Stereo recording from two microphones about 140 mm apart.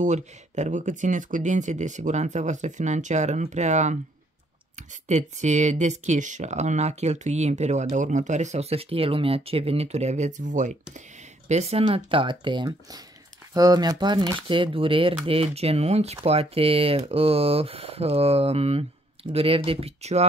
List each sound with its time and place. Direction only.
0.0 s speech: 60° right (ahead or behind)
11.4 s speech: 50° right (ahead or behind)